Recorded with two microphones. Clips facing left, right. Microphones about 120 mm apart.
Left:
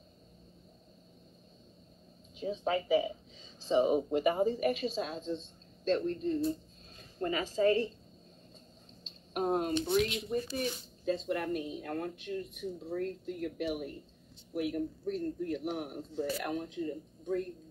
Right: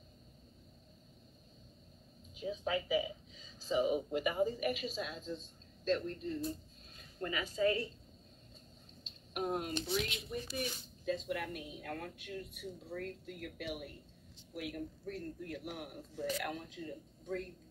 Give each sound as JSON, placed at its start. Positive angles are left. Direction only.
{"t": 2.3, "sound": "a woman's voice", "side_deg": 35}
{"t": 9.0, "sound": "a sound", "side_deg": 35}
{"t": 9.8, "sound": "speech", "side_deg": 45}